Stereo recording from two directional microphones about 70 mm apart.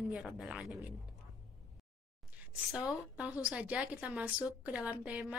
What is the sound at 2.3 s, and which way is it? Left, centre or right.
A woman's voice, centre.